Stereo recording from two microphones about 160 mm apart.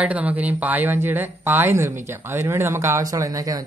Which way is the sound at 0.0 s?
10° right (ahead or behind).